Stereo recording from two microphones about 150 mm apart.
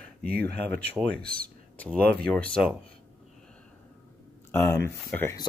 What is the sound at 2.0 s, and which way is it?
Speech, 5° left (ahead or behind).